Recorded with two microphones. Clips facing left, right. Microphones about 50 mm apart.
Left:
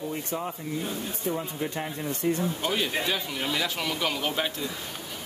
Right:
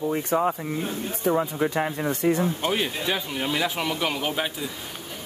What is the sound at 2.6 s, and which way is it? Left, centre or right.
A man's voice, centre.